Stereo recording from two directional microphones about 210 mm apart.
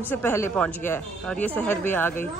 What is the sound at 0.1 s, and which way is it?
Speech, 10° left (ahead or behind).